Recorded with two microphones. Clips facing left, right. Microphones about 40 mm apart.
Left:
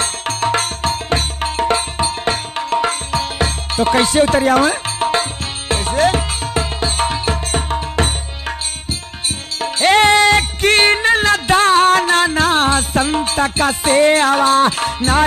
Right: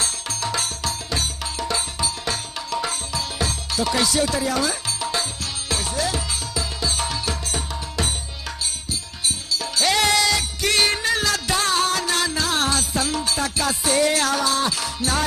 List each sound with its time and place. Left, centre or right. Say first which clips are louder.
0.0 s music: left 8 dB; left
9.6 s music: left 9 dB; left